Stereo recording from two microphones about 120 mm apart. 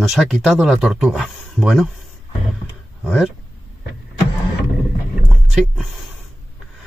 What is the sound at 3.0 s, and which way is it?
Speech, 5° left (ahead or behind).